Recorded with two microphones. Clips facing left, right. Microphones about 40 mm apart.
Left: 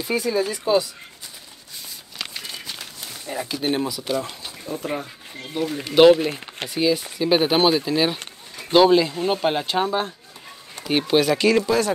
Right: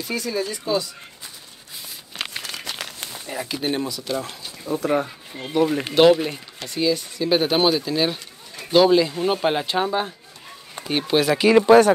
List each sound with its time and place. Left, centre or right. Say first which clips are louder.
0.0 s speech: left 3 dB; centre
2.4 s crumpling: right 2 dB; right
3.3 s speech: left 1 dB; centre
3.6 s speech: left 2 dB; centre
4.7 s speech: right 6 dB; right
5.9 s speech: left 2 dB; centre
11.1 s speech: right 1 dB; centre
11.6 s speech: right 9 dB; right